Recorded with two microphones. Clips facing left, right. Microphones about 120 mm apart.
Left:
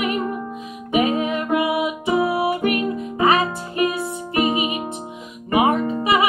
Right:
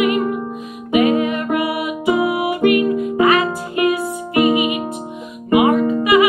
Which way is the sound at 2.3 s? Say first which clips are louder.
Right 5 dB; 30° left (ahead or behind).